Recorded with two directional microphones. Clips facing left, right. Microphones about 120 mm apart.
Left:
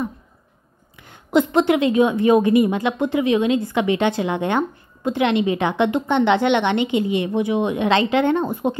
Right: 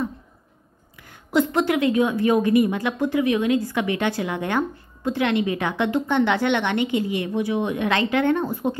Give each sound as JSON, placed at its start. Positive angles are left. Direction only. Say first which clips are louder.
{"t": 0.9, "sound": "a woman's voice", "louder": "left 3 dB", "side_deg": 25}